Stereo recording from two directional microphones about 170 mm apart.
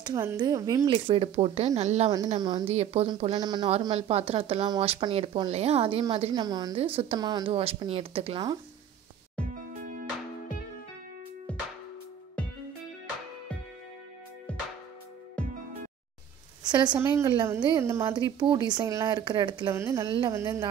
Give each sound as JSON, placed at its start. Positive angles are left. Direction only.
{"t": 0.0, "sound": "speech", "side_deg": -20}
{"t": 2.3, "sound": "speech", "side_deg": -25}
{"t": 2.7, "sound": "speech", "side_deg": -40}
{"t": 6.8, "sound": "speech", "side_deg": -35}
{"t": 9.4, "sound": "music", "side_deg": 5}
{"t": 14.5, "sound": "music", "side_deg": 5}
{"t": 16.6, "sound": "a woman's voice", "side_deg": -25}
{"t": 19.7, "sound": "speech", "side_deg": -15}